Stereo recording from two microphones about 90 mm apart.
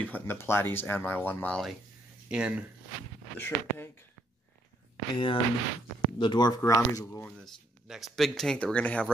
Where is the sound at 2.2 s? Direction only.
10° right (ahead or behind).